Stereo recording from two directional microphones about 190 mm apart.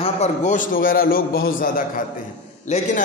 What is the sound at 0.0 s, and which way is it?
A man's voice, 35° left (ahead or behind).